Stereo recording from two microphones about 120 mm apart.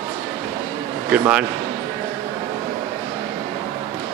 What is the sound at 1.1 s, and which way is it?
Speech, 10° right (ahead or behind).